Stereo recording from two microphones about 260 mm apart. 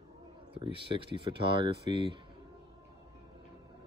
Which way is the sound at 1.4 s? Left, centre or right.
Centre.